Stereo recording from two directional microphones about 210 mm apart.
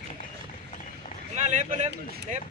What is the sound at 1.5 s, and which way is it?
Speech, 35° right (ahead or behind).